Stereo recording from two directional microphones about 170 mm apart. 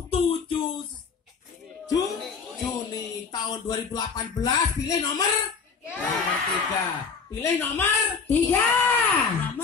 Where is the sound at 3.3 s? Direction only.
25° left (ahead or behind).